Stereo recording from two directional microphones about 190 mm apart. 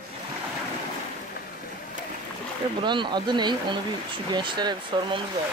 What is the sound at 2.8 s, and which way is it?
Speech, 25° right (ahead or behind).